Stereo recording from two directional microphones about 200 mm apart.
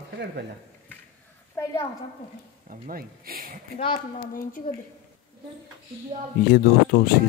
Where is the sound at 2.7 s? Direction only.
45° right (ahead or behind).